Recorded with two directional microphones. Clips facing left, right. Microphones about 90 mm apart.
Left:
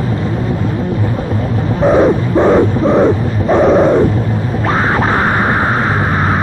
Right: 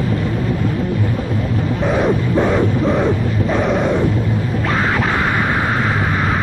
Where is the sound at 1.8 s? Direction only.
35° left (ahead or behind).